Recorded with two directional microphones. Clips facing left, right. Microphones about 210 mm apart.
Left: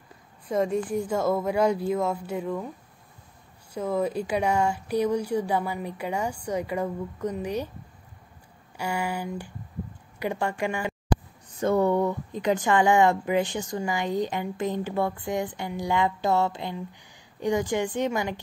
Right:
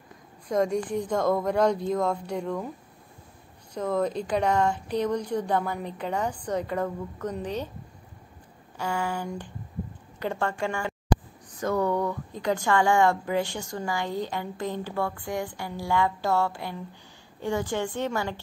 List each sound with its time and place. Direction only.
0.5 s speech: 5° left (ahead or behind)
3.7 s speech: 10° left (ahead or behind)
8.7 s speech: 15° left (ahead or behind)